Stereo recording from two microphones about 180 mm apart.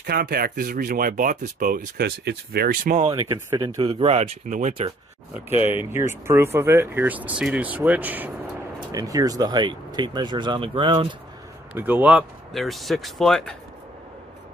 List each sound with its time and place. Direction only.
0.0 s speech: 60° right (ahead or behind)
3.1 s speech: 20° right (ahead or behind); by 4.9 s 35° right (ahead or behind)
5.9 s speech: 15° right (ahead or behind)
8.9 s speech: 20° right (ahead or behind)
11.7 s speech: 10° right (ahead or behind)